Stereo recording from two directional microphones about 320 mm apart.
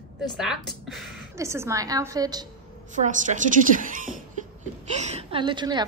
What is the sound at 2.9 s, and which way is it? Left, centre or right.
A woman's voice, right.